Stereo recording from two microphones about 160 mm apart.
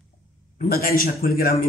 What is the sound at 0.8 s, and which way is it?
Speech, 70° left (ahead or behind).